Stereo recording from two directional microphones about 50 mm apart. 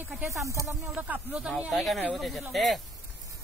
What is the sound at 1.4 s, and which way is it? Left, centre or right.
A woman's voice, centre.